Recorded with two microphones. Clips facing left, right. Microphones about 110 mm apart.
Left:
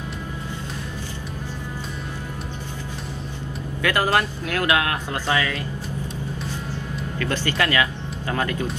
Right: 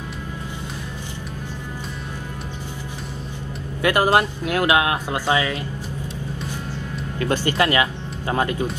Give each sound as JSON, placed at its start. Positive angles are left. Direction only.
{"t": 3.8, "sound": "speech", "side_deg": -20}
{"t": 7.2, "sound": "speech", "side_deg": -25}